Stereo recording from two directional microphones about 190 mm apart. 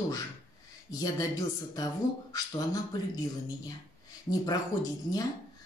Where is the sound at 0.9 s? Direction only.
20° left (ahead or behind).